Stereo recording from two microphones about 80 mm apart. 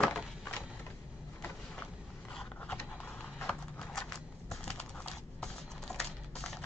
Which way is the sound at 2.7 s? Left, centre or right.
Left.